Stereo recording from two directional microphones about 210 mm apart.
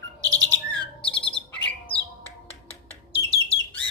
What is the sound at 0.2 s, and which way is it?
Bird, 15° right (ahead or behind).